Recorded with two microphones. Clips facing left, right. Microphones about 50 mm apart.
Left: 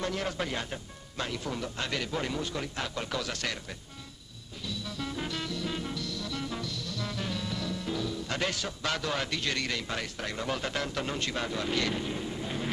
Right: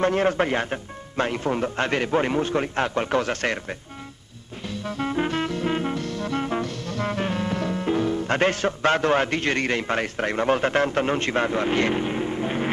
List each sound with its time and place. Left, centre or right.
0.0 s speech: right
4.6 s music: right